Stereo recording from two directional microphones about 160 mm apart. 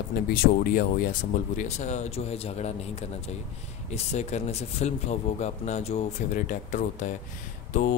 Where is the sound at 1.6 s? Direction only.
45° left (ahead or behind).